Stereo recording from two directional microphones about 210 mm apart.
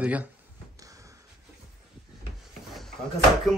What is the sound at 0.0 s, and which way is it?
Speech, 5° right (ahead or behind).